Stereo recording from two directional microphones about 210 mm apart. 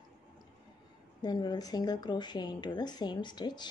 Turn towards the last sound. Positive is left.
turn(degrees=20)  # may be behind; listen again after turning